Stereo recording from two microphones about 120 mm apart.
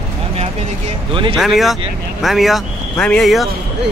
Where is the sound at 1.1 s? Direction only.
45° right (ahead or behind).